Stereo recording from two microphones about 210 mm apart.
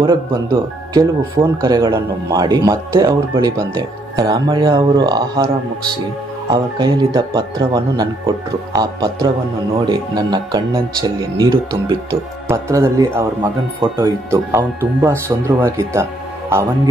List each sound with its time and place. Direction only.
0.0 s speech: 20° right (ahead or behind)
6.5 s speech: 20° right (ahead or behind)